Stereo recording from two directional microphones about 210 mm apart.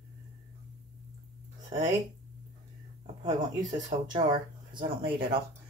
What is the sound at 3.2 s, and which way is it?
Speech, 15° right (ahead or behind).